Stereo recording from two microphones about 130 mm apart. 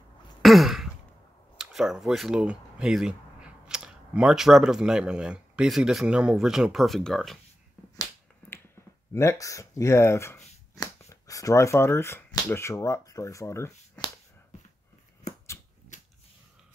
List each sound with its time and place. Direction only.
0.4 s throat clearing: centre (ahead or behind)
1.6 s speech: 5° right (ahead or behind)
8.4 s finger snapping: 15° left (ahead or behind)
9.1 s speech: 20° left (ahead or behind)
15.2 s a sound: 65° left (ahead or behind)